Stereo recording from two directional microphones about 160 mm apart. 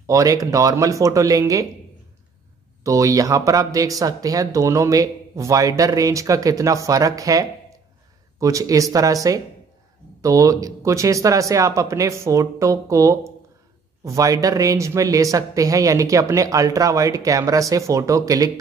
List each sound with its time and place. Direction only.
0.0 s speech: 20° right (ahead or behind)
2.8 s speech: 20° right (ahead or behind)